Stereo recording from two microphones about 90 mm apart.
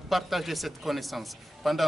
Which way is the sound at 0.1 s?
Centre (ahead or behind).